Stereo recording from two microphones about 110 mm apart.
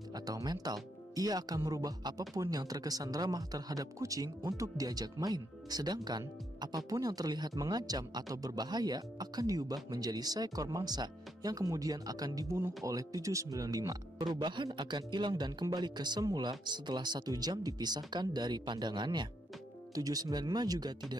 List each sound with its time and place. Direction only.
0.1 s speech: 35° right (ahead or behind)
12.5 s speech: 20° right (ahead or behind); by 20.9 s 35° right (ahead or behind)